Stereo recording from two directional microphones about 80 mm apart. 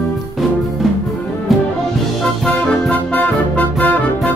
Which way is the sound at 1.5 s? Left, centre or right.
Centre.